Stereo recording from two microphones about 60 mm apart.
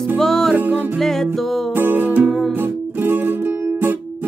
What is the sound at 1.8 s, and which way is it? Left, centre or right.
Music, right.